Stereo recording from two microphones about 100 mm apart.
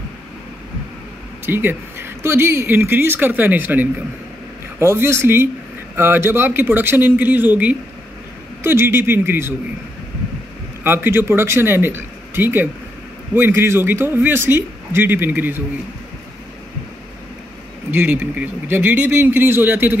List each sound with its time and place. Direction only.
1.4 s speech: 20° right (ahead or behind)
8.6 s speech: 25° right (ahead or behind)
10.8 s speech: 20° right (ahead or behind)
17.9 s speech: 20° right (ahead or behind)